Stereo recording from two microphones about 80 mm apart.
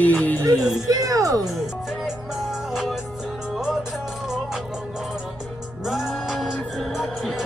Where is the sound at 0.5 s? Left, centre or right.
Centre.